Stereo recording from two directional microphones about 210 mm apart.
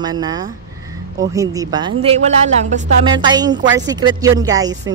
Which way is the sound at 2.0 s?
30° right (ahead or behind).